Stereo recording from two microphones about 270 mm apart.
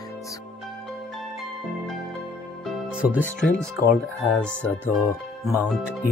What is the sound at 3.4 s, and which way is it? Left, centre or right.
Speech, left.